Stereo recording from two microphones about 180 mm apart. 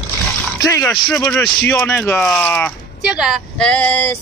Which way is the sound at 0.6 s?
15° left (ahead or behind).